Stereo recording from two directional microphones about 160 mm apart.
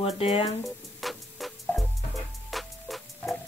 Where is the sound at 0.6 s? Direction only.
Centre (ahead or behind).